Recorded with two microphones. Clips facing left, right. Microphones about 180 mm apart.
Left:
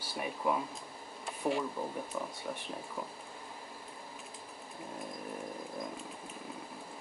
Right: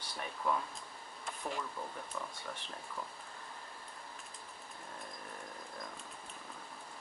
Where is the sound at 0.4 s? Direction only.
15° left (ahead or behind).